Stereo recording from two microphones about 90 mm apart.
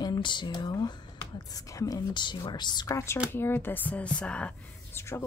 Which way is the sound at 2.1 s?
60° left (ahead or behind).